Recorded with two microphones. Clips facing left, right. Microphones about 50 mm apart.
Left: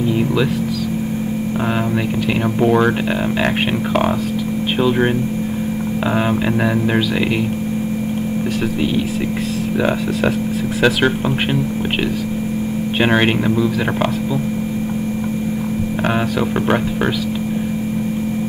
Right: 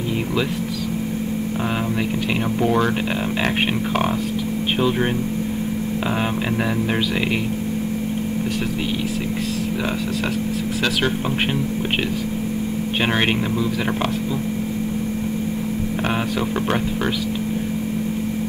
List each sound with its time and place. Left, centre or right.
0.2 s speech: centre
2.2 s speech: centre
3.1 s speech: centre
4.8 s speech: left
6.0 s speech: centre
7.0 s speech: centre
8.5 s speech: centre
9.8 s speech: left
11.2 s speech: centre
16.0 s speech: centre
16.5 s speech: centre